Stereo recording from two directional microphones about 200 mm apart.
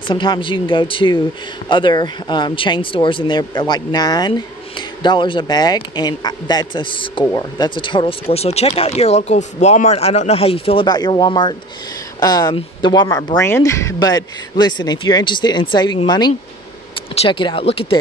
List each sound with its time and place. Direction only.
0.0 s speech: 25° left (ahead or behind)